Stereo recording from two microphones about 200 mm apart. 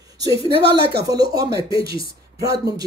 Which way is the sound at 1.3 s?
15° right (ahead or behind).